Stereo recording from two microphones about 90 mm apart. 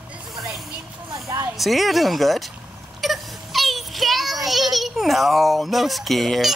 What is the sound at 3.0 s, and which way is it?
Child singing, centre (ahead or behind).